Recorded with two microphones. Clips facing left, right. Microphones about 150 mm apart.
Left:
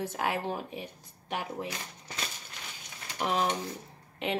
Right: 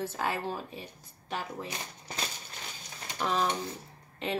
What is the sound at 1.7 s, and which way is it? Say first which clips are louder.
Speech: even; 30° right (ahead or behind).